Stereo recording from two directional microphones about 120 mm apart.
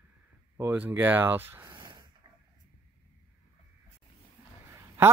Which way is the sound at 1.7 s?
40° right (ahead or behind).